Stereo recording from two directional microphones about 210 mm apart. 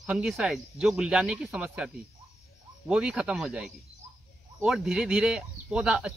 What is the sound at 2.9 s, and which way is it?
Speech, 5° right (ahead or behind).